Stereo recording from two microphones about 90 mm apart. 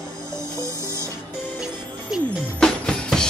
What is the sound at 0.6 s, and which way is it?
Music, 35° right (ahead or behind).